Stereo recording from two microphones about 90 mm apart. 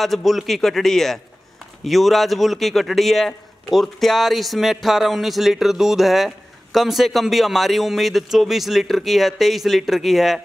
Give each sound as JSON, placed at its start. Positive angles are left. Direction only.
{"t": 0.0, "sound": "speech", "side_deg": 0}